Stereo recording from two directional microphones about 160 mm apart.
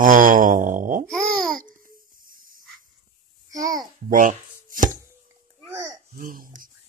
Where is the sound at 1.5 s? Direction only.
60° right (ahead or behind).